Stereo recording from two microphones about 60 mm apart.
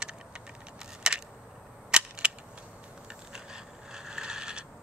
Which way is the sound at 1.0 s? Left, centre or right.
Centre.